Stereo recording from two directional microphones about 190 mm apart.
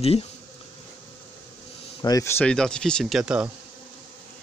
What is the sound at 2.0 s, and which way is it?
Speech, 20° left (ahead or behind).